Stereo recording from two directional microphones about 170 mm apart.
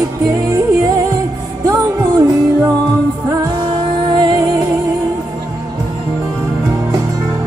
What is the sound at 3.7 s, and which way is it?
Music, 30° right (ahead or behind).